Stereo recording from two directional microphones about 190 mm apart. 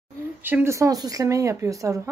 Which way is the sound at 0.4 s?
10° right (ahead or behind).